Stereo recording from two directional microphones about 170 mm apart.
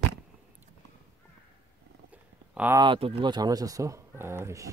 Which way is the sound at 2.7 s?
30° right (ahead or behind).